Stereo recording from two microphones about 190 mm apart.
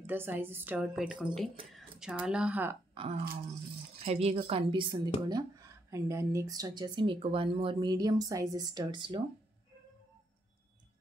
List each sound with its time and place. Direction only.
0.0 s a woman's voice: 10° right (ahead or behind)
2.9 s a sound: 30° right (ahead or behind)
4.0 s a woman's voice: 35° right (ahead or behind)